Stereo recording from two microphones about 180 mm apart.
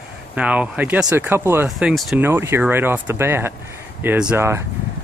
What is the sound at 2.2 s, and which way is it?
Speech, 15° right (ahead or behind).